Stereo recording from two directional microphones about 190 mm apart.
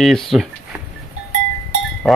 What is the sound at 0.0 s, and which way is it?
Speech, centre (ahead or behind).